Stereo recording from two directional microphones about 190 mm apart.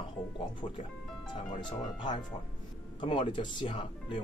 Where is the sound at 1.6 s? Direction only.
25° left (ahead or behind).